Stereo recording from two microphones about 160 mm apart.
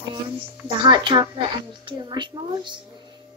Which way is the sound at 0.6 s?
30° right (ahead or behind).